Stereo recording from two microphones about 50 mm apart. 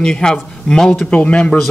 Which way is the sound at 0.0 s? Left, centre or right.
Centre.